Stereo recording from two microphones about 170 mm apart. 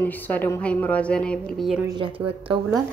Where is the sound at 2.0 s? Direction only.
30° right (ahead or behind).